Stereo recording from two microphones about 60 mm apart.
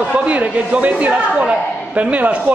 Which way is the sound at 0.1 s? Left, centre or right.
Right.